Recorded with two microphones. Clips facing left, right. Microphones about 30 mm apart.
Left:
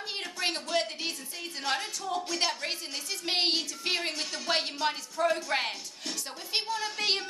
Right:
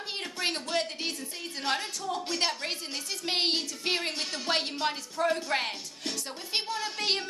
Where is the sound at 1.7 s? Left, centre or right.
Centre.